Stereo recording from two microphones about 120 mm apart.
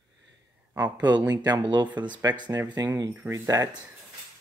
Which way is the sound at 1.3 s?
35° right (ahead or behind).